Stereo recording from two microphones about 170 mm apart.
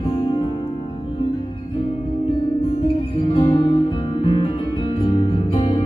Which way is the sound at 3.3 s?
30° left (ahead or behind).